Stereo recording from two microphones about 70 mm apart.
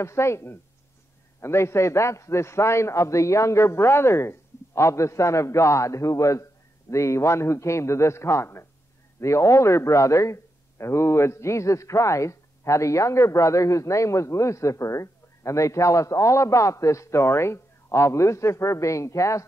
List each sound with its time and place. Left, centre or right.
0.0 s a man's voice: left